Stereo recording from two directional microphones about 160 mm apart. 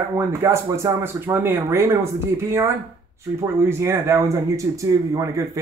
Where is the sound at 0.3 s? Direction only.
15° right (ahead or behind).